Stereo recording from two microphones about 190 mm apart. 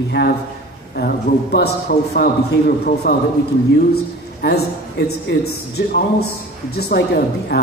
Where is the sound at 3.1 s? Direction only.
55° left (ahead or behind).